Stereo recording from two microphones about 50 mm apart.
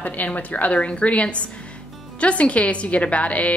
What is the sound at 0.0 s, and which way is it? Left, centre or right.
A woman's voice, left.